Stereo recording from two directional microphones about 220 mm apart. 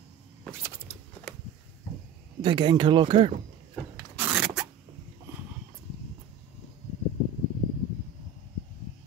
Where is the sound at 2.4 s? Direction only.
20° right (ahead or behind).